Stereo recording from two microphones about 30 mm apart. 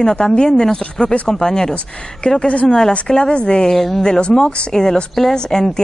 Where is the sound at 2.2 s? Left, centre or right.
Left.